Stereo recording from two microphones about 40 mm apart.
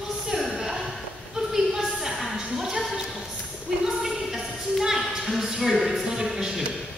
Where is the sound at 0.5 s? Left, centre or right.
Centre.